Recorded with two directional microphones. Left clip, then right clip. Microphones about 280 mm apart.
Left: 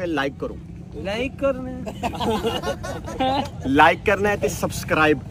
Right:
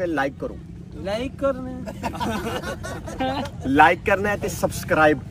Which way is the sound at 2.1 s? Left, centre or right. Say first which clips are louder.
Left 4 dB; centre.